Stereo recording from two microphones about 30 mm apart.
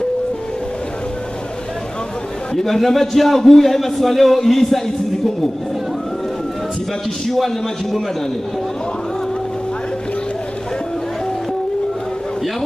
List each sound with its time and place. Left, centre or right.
2.5 s a man's voice: centre
7.2 s a man's voice: centre